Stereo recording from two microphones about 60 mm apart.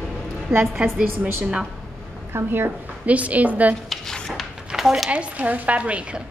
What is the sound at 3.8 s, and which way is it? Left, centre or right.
Dishes, centre.